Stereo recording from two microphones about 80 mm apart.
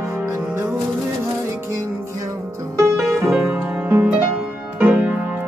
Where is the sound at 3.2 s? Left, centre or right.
Right.